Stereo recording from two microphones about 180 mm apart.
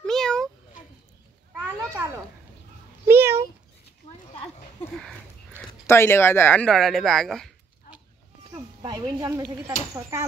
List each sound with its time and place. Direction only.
0.0 s cat: 5° left (ahead or behind)
1.5 s children playing: 10° right (ahead or behind)
3.1 s a sound: 15° right (ahead or behind)
5.6 s speech: 15° left (ahead or behind)
8.5 s a sound: 20° right (ahead or behind)
9.9 s speech: 20° right (ahead or behind)